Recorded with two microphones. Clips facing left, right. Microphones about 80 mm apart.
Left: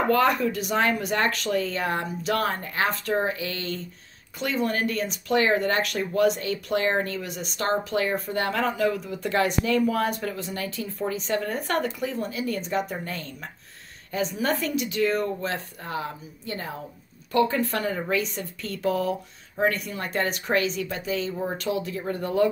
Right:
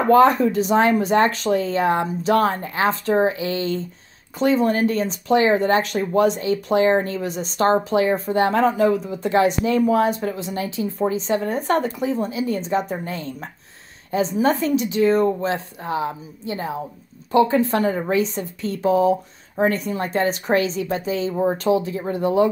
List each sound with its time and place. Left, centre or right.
0.1 s speech: right